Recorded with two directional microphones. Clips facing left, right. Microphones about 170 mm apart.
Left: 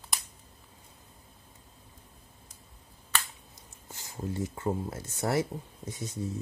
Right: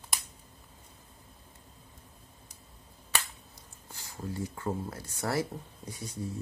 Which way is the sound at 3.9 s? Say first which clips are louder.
Left 3 dB; 20° left (ahead or behind).